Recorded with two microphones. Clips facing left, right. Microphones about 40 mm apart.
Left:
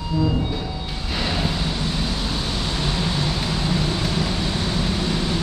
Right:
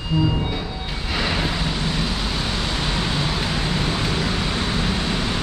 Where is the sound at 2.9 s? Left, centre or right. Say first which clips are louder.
Right 1 dB; right.